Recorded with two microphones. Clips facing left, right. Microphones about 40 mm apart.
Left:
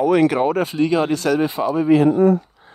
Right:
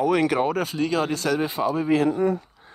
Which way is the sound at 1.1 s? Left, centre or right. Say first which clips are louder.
Left 5 dB; left.